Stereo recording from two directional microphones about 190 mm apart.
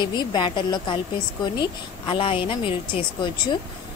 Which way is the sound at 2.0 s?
25° left (ahead or behind).